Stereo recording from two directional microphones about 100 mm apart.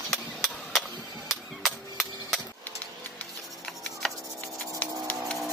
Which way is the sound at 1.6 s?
Centre (ahead or behind).